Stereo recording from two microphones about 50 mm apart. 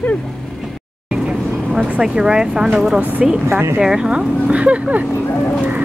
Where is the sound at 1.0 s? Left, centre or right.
Centre.